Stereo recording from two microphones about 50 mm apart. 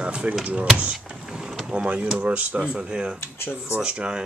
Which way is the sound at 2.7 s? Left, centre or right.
Centre.